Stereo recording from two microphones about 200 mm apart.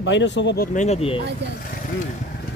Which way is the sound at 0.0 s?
65° left (ahead or behind).